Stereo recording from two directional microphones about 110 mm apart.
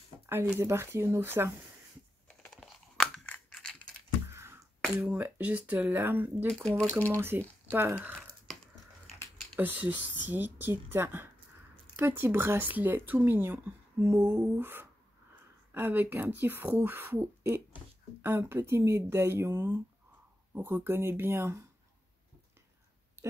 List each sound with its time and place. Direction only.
0.6 s speech: 25° right (ahead or behind)
2.2 s a sound: 10° left (ahead or behind)
4.3 s a sound: 25° right (ahead or behind)
5.0 s speech: 15° right (ahead or behind)
6.5 s speech: centre (ahead or behind)
7.2 s speech: 20° right (ahead or behind)
9.6 s speech: 15° right (ahead or behind)